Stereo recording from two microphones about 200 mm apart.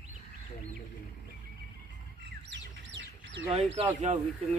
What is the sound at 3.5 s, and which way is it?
Speech, 30° right (ahead or behind).